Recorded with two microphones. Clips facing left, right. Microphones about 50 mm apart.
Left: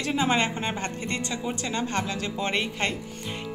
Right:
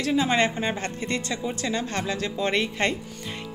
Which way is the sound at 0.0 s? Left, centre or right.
Centre.